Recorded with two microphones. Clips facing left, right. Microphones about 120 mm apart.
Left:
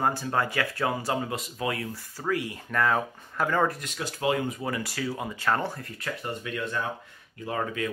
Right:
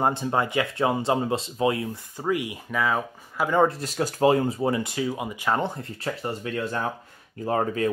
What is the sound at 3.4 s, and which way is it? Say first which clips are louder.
Speech: right 5 dB; 20° right (ahead or behind).